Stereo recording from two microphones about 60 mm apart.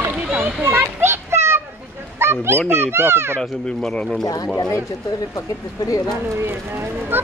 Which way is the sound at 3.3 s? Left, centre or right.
Centre.